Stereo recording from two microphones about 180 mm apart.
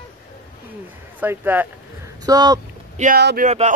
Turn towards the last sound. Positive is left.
turn(degrees=-60)  # may be behind; listen again after turning